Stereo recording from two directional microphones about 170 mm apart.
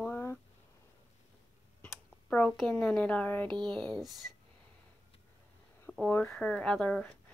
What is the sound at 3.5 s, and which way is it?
Speech, 30° right (ahead or behind).